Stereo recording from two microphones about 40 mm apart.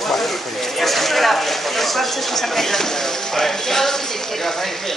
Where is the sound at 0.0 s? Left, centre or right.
Centre.